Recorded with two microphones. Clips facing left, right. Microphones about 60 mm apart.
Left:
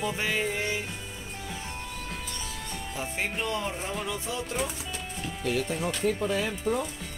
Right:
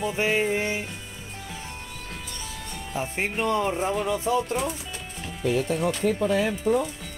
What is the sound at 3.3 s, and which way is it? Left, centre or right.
Music, right.